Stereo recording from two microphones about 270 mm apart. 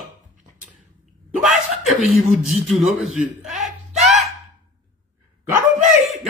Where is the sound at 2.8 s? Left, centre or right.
Centre.